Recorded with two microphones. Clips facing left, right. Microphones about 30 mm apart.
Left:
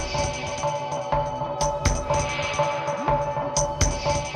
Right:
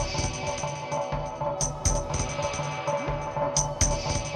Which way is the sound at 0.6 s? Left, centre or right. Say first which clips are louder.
Left 4 dB; left.